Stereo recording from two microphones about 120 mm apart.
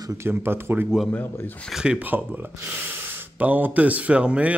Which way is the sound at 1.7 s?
5° right (ahead or behind).